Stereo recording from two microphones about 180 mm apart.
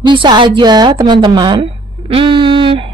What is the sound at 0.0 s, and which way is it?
Speech, 25° right (ahead or behind).